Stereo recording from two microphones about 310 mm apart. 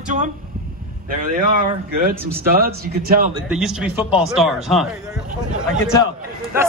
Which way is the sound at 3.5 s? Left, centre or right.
Centre.